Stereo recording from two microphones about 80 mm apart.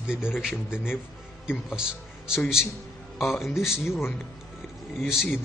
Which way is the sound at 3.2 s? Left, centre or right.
Centre.